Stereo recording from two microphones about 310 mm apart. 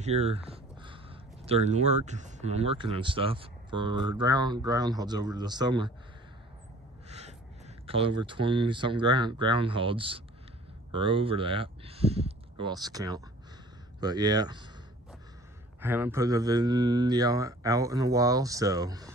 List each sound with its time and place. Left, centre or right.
0.0 s a sound: right
1.4 s speech: right
7.1 s crow: right
7.8 s speech: centre
15.8 s speech: centre